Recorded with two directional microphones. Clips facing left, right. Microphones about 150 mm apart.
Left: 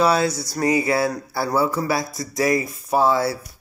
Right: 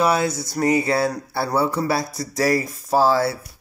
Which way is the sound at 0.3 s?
55° right (ahead or behind).